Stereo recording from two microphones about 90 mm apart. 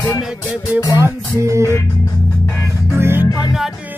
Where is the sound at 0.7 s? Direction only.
40° left (ahead or behind).